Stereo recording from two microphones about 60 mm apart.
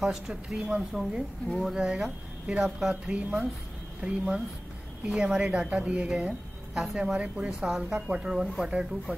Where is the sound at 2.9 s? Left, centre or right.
Centre.